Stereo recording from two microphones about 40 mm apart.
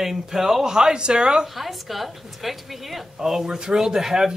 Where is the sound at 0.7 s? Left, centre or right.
Right.